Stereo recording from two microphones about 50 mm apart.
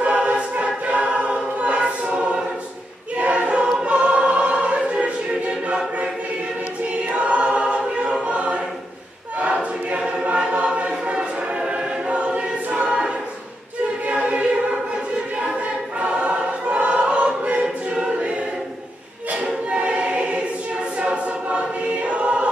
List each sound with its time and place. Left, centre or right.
0.0 s choir: right
7.2 s choir: right
10.2 s choir: right
14.0 s choir: right
16.0 s choir: right
19.4 s choir: right